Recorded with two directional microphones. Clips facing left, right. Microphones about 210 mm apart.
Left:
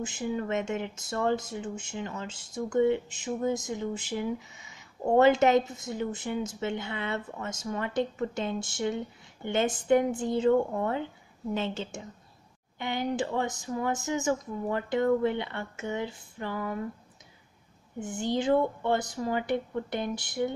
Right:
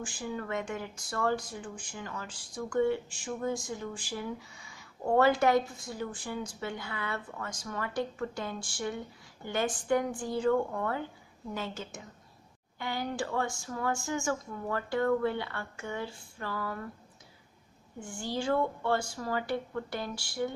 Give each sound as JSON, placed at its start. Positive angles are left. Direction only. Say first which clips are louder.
{"t": 0.0, "sound": "speech", "louder": "left 5 dB", "side_deg": 20}
{"t": 17.9, "sound": "speech", "louder": "left 6 dB", "side_deg": 20}